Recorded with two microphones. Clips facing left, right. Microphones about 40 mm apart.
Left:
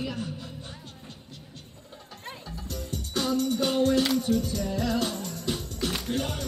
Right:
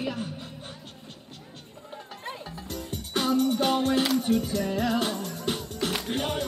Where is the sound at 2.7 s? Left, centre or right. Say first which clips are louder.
Right 1 dB; right.